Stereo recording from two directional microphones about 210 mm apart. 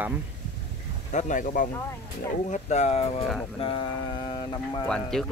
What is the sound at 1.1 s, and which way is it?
Speech, 40° left (ahead or behind).